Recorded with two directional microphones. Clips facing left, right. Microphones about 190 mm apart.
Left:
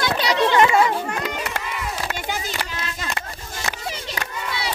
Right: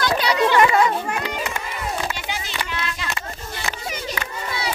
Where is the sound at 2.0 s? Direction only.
45° left (ahead or behind).